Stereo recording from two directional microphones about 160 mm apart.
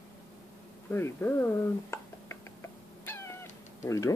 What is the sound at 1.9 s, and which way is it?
Cat, 15° left (ahead or behind).